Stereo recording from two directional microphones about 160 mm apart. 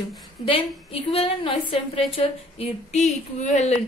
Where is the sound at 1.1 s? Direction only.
35° left (ahead or behind).